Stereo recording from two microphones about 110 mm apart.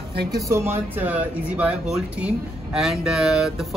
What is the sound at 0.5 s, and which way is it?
Speech, 25° right (ahead or behind).